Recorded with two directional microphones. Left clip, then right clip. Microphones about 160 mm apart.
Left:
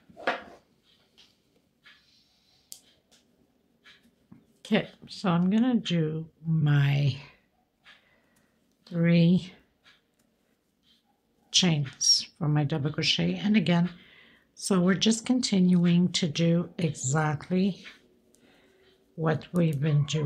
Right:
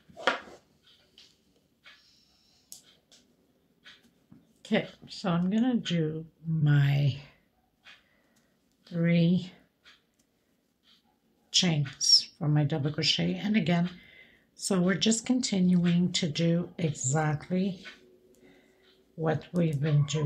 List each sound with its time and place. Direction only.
4.6 s speech: 15° left (ahead or behind)
8.8 s speech: 20° left (ahead or behind)
11.5 s speech: 20° left (ahead or behind)
19.1 s speech: 20° left (ahead or behind)